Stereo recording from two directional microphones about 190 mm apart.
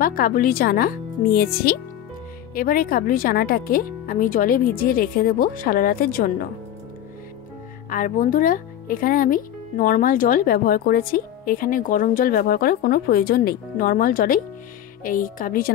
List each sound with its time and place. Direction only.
0.0 s speech: 50° left (ahead or behind)
7.9 s speech: 45° left (ahead or behind)